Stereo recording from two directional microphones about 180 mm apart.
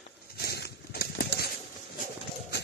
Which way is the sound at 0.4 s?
60° left (ahead or behind).